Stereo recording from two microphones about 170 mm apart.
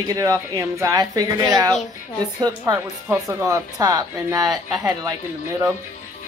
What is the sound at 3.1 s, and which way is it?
Speech, 20° right (ahead or behind).